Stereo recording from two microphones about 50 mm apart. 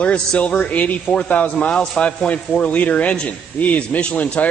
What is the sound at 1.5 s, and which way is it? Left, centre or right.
A man's voice, centre.